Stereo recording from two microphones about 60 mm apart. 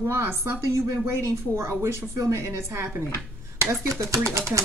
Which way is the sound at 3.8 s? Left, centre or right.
Right.